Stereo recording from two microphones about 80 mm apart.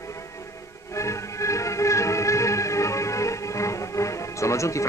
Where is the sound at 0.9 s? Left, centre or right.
Left.